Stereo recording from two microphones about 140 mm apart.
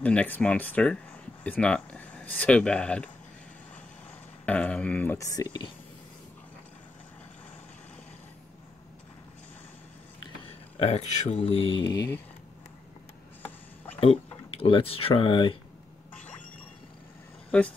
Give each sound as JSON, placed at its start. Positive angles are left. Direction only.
{"t": 0.0, "sound": "speech", "side_deg": 10}
{"t": 4.5, "sound": "speech", "side_deg": 10}
{"t": 10.8, "sound": "speech", "side_deg": 50}
{"t": 14.5, "sound": "speech", "side_deg": 40}
{"t": 17.5, "sound": "speech", "side_deg": 10}